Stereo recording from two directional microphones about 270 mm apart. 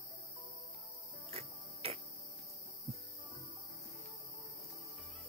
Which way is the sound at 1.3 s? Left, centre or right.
Right.